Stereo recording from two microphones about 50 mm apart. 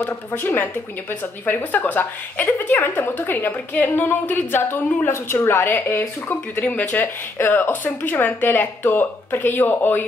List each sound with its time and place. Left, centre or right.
0.0 s a woman's voice: left